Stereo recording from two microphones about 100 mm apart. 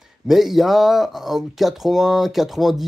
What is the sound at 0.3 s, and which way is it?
Speech, centre (ahead or behind).